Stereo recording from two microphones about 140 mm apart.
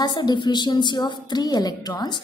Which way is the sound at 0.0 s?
30° left (ahead or behind).